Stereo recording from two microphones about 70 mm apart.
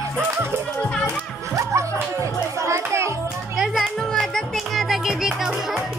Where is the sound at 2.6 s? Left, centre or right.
Right.